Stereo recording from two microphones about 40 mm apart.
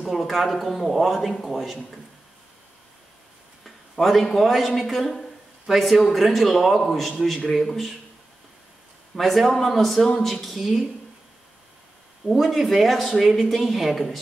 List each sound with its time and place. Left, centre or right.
0.0 s speech: centre
3.6 s a sound: centre
4.4 s speech: centre
9.1 s speech: centre
12.3 s speech: centre